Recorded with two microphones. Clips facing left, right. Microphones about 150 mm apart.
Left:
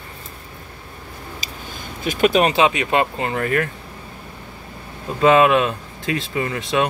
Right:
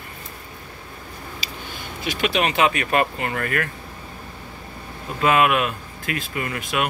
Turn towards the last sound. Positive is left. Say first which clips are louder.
# left 5 dB
turn(degrees=25)  # may be behind; listen again after turning